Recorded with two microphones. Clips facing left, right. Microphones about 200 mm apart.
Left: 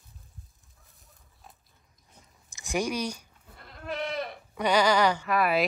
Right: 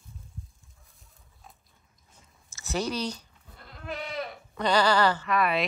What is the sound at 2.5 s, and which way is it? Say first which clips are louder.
Speech: left 1 dB; 15° left (ahead or behind).